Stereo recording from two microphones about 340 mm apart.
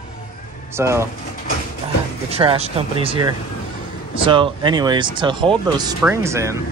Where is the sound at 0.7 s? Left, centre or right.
Centre.